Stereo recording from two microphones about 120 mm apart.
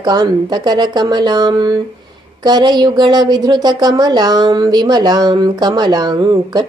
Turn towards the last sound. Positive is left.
turn(degrees=-40)  # may be behind; listen again after turning